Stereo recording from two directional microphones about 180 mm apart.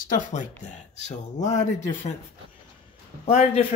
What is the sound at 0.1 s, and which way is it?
Speech, 45° left (ahead or behind).